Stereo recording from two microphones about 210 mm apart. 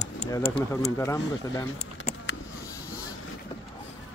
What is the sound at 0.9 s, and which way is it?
Speech, 15° left (ahead or behind).